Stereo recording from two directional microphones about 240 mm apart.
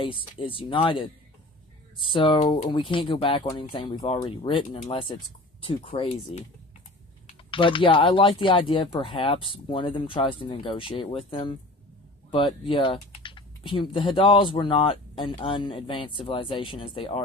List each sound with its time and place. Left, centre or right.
0.0 s speech: left
7.5 s speech: left